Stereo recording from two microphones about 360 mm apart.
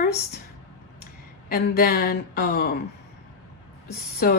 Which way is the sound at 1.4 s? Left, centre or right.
Left.